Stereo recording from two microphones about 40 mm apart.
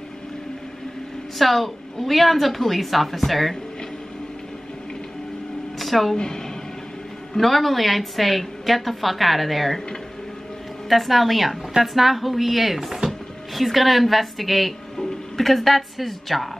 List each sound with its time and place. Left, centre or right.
1.4 s a woman's voice: centre
5.8 s a sound: centre
6.1 s speech: centre
7.3 s a woman's voice: centre
10.9 s a woman's voice: centre